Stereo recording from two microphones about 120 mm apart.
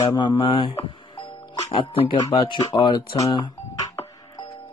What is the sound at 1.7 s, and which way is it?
Speech, 45° left (ahead or behind).